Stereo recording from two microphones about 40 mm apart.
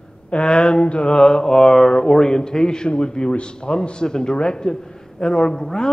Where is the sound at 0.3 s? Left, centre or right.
Left.